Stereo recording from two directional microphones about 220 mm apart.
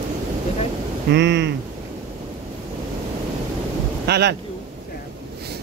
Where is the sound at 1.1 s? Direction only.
55° right (ahead or behind).